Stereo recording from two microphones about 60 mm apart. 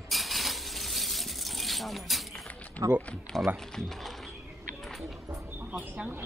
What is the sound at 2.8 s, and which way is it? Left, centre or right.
Speech, right.